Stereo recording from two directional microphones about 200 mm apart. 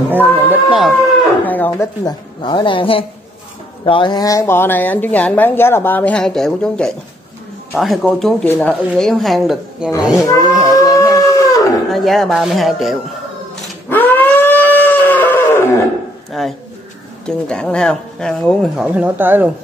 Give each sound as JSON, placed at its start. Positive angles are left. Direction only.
{"t": 0.5, "sound": "speech", "side_deg": -5}
{"t": 2.0, "sound": "a woman's voice", "side_deg": 20}
{"t": 10.2, "sound": "a sound", "side_deg": 15}
{"t": 11.9, "sound": "speech", "side_deg": 0}
{"t": 13.8, "sound": "livestock", "side_deg": 10}
{"t": 16.3, "sound": "a sound", "side_deg": 0}
{"t": 17.3, "sound": "speech", "side_deg": 5}